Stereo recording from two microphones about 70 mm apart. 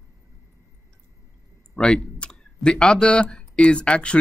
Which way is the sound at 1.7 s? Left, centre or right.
Centre.